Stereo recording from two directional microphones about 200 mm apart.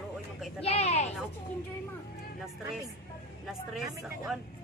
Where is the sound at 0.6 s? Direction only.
30° left (ahead or behind).